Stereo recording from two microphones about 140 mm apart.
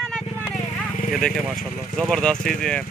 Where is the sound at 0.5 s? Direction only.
65° left (ahead or behind).